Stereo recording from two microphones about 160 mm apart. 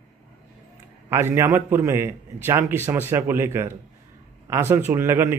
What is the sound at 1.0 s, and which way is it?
A man's voice, 15° right (ahead or behind).